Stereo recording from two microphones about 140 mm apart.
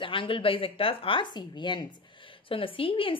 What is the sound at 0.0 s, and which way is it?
A woman's voice, 40° left (ahead or behind).